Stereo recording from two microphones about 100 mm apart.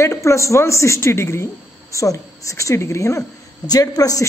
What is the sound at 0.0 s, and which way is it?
Speech, 30° left (ahead or behind).